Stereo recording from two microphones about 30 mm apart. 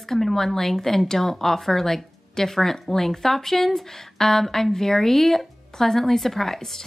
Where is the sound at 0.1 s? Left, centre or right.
Centre.